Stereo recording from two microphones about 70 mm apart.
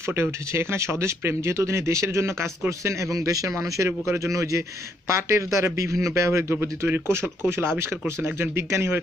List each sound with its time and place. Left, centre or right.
0.0 s speech: right